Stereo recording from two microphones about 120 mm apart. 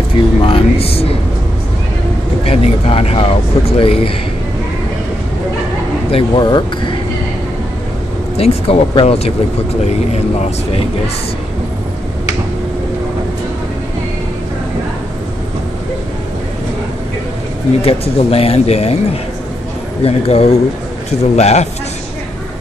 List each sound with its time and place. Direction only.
0.1 s speech: 50° left (ahead or behind)
2.4 s speech: 55° left (ahead or behind)
6.0 s speech: 50° left (ahead or behind)
6.4 s speech: 40° left (ahead or behind)
8.4 s speech: 55° left (ahead or behind)
17.8 s speech: 55° left (ahead or behind)
20.0 s speech: 55° left (ahead or behind)